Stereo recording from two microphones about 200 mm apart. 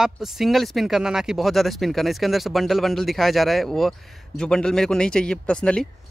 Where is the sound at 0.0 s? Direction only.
Centre (ahead or behind).